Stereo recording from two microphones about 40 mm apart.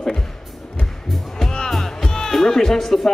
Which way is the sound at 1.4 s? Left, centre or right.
Centre.